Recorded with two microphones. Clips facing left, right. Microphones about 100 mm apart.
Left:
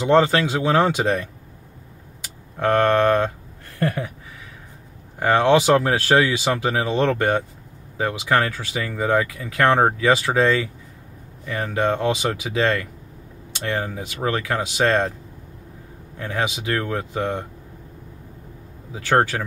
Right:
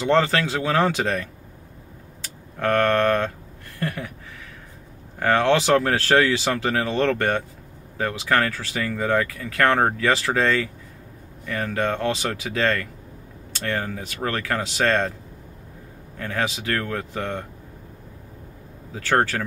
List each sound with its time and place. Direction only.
0.0 s speech: 15° left (ahead or behind)
3.8 s speech: 30° left (ahead or behind)
5.2 s speech: 15° left (ahead or behind)
16.2 s speech: 15° left (ahead or behind)
18.9 s speech: 15° left (ahead or behind)